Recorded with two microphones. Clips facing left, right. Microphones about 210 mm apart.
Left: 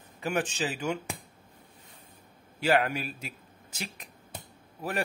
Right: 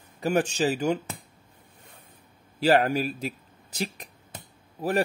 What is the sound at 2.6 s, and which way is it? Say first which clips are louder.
A man's voice: right 5 dB; 35° right (ahead or behind).